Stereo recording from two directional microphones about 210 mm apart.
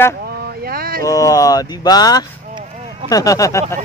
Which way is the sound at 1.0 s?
15° left (ahead or behind).